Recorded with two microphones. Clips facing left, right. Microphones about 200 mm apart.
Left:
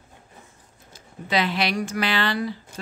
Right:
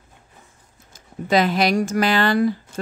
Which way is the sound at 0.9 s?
45° right (ahead or behind).